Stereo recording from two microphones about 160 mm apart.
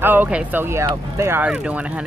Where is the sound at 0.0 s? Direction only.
10° right (ahead or behind).